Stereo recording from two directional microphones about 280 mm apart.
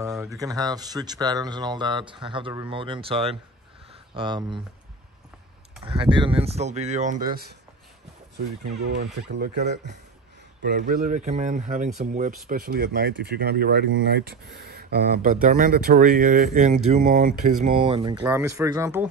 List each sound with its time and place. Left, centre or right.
0.0 s a sound: centre
0.4 s speech: centre
5.9 s speech: centre
8.4 s speech: right; by 19.0 s centre